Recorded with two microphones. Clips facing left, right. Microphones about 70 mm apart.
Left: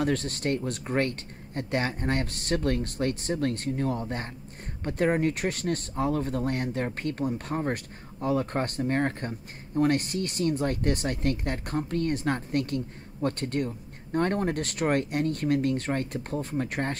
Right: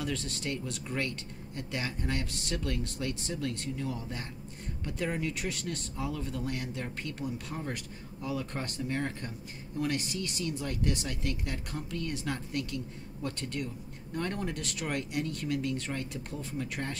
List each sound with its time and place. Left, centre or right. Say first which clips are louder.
0.0 s speech: left 8 dB; left